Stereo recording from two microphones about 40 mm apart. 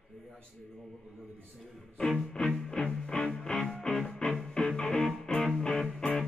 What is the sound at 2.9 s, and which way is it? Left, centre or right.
Music, centre.